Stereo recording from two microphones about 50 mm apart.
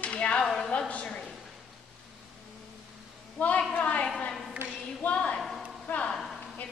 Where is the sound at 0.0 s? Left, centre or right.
Left.